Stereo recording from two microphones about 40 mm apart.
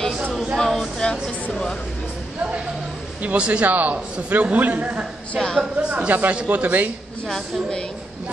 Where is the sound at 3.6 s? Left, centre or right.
Right.